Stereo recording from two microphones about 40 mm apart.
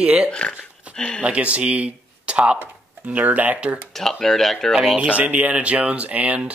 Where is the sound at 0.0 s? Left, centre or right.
Right.